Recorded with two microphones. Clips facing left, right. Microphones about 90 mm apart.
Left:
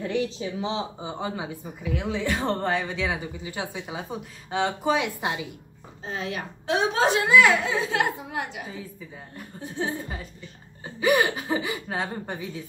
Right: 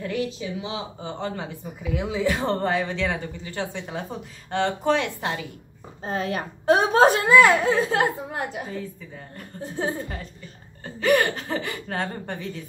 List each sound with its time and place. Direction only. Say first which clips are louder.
0.4 s speech: left 2 dB; 35° left (ahead or behind)
1.0 s speech: right 1 dB; 10° left (ahead or behind)
6.0 s a woman's voice: right 5 dB; 45° right (ahead or behind)
11.0 s speech: right 1 dB; 10° left (ahead or behind)